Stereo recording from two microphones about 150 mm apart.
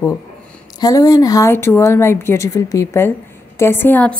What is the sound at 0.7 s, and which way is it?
A woman's voice, 25° left (ahead or behind).